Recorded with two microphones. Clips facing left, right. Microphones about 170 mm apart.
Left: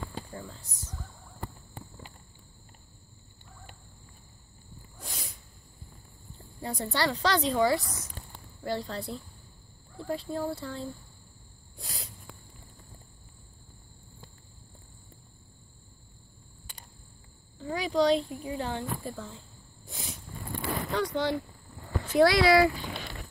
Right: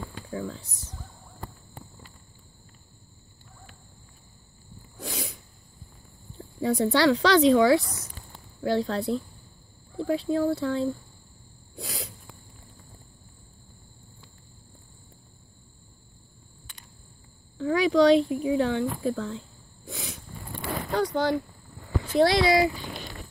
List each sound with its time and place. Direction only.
0.3 s speech: 85° right
5.0 s sneeze: 80° right
6.3 s speech: 85° right
11.7 s sneeze: 80° right
17.6 s speech: 75° right (ahead or behind)
19.9 s a sound: 75° right (ahead or behind)
20.9 s speech: 40° right (ahead or behind)
22.1 s speech: 25° right (ahead or behind)